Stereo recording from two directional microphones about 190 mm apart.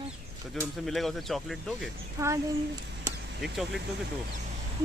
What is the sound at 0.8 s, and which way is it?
Speech, centre (ahead or behind).